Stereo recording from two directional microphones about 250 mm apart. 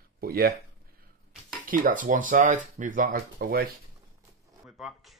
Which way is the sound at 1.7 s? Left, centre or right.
Right.